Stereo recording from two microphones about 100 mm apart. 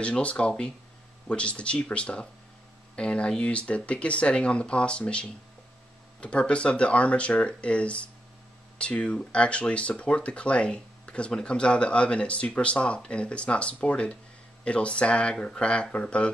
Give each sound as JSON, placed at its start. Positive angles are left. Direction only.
{"t": 0.0, "sound": "speech", "side_deg": 10}